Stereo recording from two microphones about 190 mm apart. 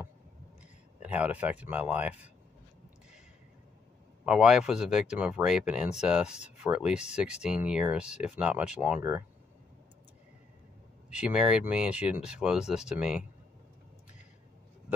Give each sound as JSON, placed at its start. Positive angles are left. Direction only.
{"t": 1.0, "sound": "speech", "side_deg": -5}
{"t": 4.3, "sound": "speech", "side_deg": -5}
{"t": 11.1, "sound": "speech", "side_deg": -5}